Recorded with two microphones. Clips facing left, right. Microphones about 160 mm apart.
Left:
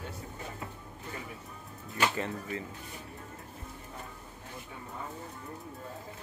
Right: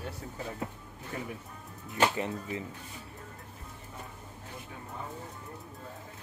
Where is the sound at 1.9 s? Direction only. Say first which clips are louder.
Right 3 dB; 20° right (ahead or behind).